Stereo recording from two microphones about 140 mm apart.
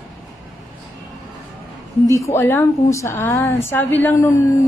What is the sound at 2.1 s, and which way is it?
A woman's voice, 20° left (ahead or behind).